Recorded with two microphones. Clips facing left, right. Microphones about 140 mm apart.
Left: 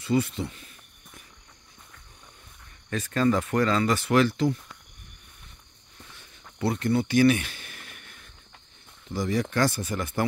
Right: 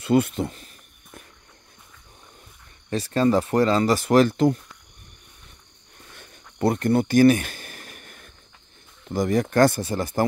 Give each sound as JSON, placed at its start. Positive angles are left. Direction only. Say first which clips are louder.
{"t": 0.0, "sound": "speech", "louder": "right 5 dB", "side_deg": -55}
{"t": 2.9, "sound": "speech", "louder": "right 4 dB", "side_deg": -30}
{"t": 6.1, "sound": "a sound", "louder": "right 7 dB", "side_deg": -50}
{"t": 9.1, "sound": "speech", "louder": "right 6 dB", "side_deg": -50}
{"t": 9.8, "sound": "speech", "louder": "right 4 dB", "side_deg": -35}